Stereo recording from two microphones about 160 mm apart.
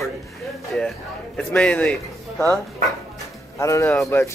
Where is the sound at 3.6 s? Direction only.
20° left (ahead or behind).